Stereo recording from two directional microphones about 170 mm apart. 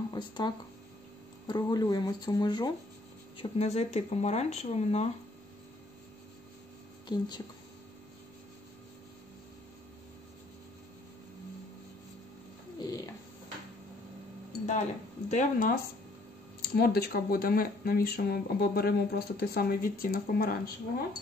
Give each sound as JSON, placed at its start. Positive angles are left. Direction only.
{"t": 0.1, "sound": "speech", "side_deg": 25}
{"t": 1.5, "sound": "speech", "side_deg": 25}
{"t": 7.1, "sound": "speech", "side_deg": 25}
{"t": 12.7, "sound": "a sound", "side_deg": 20}
{"t": 14.7, "sound": "speech", "side_deg": 45}
{"t": 16.7, "sound": "speech", "side_deg": 70}